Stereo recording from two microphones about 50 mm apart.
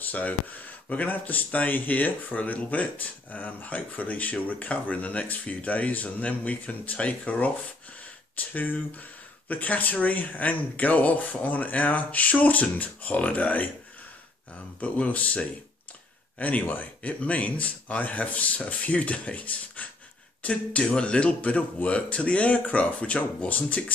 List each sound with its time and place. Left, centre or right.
0.0 s speech: left
14.8 s speech: left